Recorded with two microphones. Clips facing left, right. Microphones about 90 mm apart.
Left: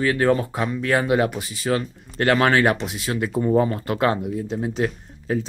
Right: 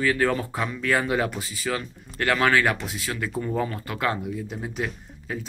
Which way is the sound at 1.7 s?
40° left (ahead or behind).